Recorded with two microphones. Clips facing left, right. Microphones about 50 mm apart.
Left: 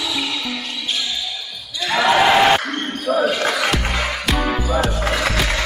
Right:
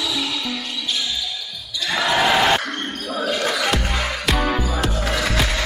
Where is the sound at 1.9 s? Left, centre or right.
Centre.